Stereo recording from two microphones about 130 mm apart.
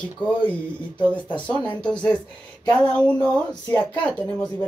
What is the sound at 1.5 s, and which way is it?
Speech, 10° left (ahead or behind).